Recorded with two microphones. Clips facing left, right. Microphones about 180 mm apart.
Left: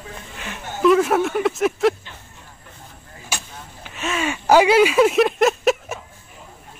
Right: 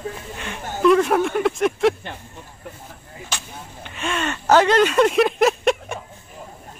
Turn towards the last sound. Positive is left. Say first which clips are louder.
# left 1 dB
turn(degrees=0)  # may be behind; listen again after turning